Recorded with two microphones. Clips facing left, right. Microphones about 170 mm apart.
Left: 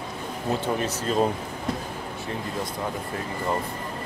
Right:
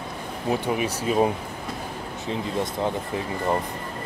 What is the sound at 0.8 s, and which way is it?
Speech, 10° right (ahead or behind).